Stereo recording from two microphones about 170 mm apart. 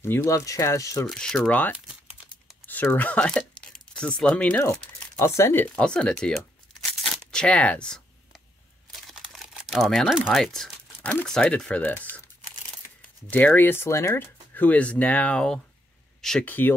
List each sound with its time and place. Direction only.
0.0 s speech: 15° left (ahead or behind)
1.0 s speech: 5° left (ahead or behind)
2.6 s a sound: 10° left (ahead or behind)
4.2 s speech: 5° left (ahead or behind)
13.3 s speech: 10° left (ahead or behind)